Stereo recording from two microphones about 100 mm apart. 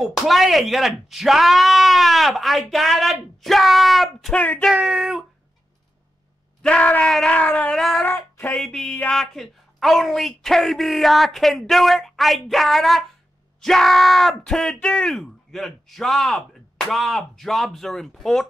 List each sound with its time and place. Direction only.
0.0 s a woman's voice: centre (ahead or behind)
4.4 s speech: 15° left (ahead or behind)
4.7 s speech: 5° right (ahead or behind)
6.6 s speech: 10° left (ahead or behind)
8.0 s a sound: 20° left (ahead or behind)
8.5 s a woman's voice: 5° left (ahead or behind)